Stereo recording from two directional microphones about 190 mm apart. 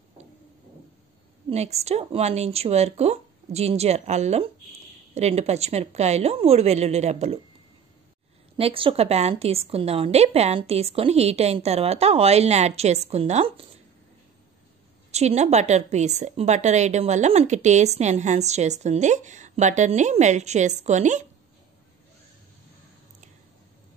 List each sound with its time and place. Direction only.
1.5 s a woman's voice: 35° right (ahead or behind)
8.5 s a woman's voice: 30° right (ahead or behind)
15.0 s a woman's voice: 35° right (ahead or behind)